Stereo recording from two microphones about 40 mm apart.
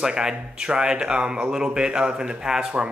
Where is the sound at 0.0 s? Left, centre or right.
Centre.